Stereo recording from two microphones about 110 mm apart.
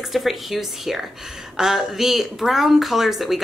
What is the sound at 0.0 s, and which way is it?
A woman's voice, centre (ahead or behind).